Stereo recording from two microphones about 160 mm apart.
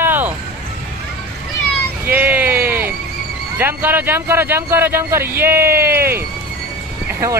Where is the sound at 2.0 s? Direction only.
10° right (ahead or behind).